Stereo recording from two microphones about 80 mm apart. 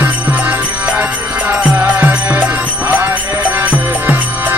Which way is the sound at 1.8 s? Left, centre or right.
Right.